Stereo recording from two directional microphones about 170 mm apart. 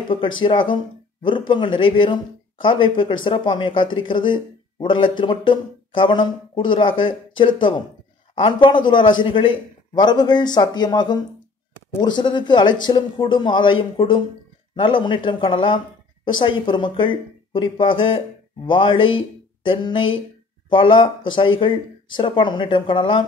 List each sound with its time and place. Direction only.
0.1 s speech: 30° left (ahead or behind)